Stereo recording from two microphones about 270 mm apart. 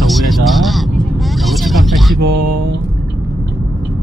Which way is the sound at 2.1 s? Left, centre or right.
Right.